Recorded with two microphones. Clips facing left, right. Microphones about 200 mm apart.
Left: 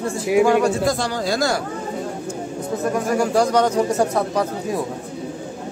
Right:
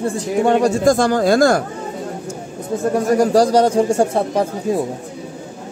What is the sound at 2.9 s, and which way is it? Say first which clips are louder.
A man's voice: right 6 dB; 35° right (ahead or behind).